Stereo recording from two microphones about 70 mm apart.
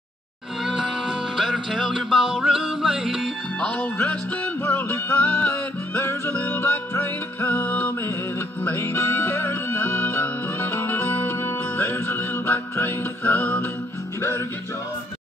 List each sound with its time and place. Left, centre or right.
0.7 s music: centre
1.7 s music: centre
2.0 s music: centre
3.6 s music: centre